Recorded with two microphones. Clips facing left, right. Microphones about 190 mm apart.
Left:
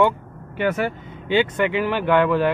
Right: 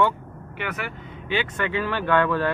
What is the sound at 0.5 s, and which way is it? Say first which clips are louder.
Speech: left 10 dB; 30° left (ahead or behind).